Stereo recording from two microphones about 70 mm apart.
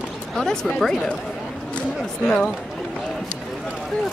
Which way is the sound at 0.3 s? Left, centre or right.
Centre.